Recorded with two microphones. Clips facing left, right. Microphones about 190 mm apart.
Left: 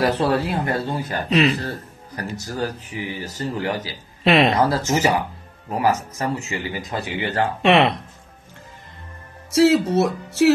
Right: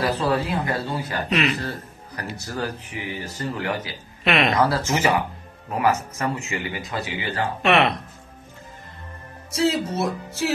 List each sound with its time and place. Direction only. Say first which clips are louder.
0.3 s speech: left 2 dB; 55° left (ahead or behind)
1.3 s speech: left 5 dB; 35° left (ahead or behind)
7.1 s speech: left 6 dB; 65° left (ahead or behind)
7.6 s speech: left 3 dB; 30° left (ahead or behind)
9.6 s speech: left 7 dB; 75° left (ahead or behind)